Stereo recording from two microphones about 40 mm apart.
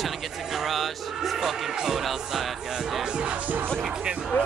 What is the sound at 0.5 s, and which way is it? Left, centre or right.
Music, centre.